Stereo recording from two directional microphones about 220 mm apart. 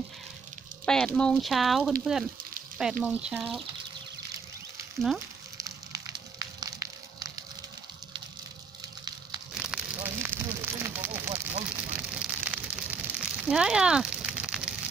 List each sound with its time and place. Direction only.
0.8 s speech: 5° left (ahead or behind)
5.6 s fire: 15° right (ahead or behind)
9.5 s a sound: 5° right (ahead or behind)